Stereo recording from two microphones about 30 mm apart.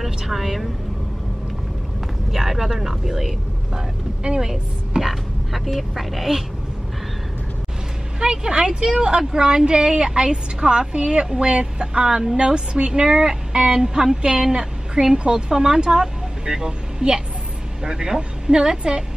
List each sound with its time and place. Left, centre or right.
0.0 s speech: centre
2.3 s a woman's voice: centre
5.0 s speech: centre
8.2 s a woman's voice: right
8.7 s a woman's voice: right